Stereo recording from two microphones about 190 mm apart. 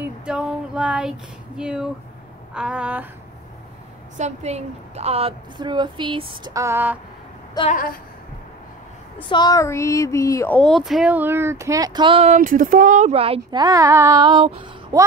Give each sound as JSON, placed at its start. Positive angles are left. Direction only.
{"t": 0.0, "sound": "speech", "side_deg": -5}
{"t": 4.2, "sound": "a woman's voice", "side_deg": -35}
{"t": 7.7, "sound": "a woman's voice", "side_deg": 50}
{"t": 9.3, "sound": "speech", "side_deg": 20}
{"t": 12.4, "sound": "a woman's voice", "side_deg": -45}